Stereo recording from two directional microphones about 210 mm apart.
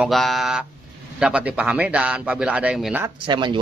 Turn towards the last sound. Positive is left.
turn(degrees=-20)  # may be behind; listen again after turning